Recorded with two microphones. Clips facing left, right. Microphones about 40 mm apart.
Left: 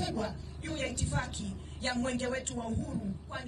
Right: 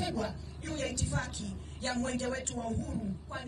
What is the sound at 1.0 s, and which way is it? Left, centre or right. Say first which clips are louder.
A woman's voice: left 1 dB; left.